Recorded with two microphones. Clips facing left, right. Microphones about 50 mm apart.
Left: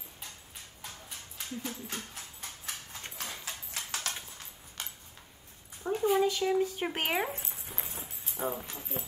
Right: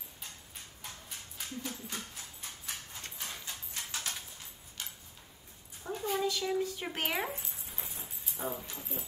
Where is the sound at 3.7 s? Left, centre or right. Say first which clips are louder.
Left 1 dB; left.